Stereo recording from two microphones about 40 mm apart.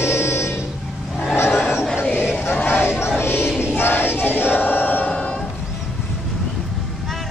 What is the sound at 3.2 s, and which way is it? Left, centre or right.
Crowd, left.